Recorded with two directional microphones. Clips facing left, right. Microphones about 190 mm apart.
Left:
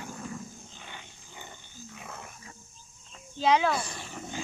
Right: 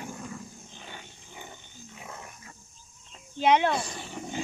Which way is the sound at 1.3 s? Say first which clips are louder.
Right 2 dB; 15° right (ahead or behind).